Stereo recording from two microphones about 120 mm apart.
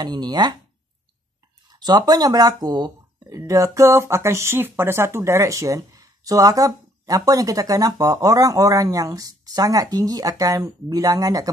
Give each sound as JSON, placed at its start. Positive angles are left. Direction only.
{"t": 0.0, "sound": "speech", "side_deg": -35}
{"t": 1.7, "sound": "speech", "side_deg": -35}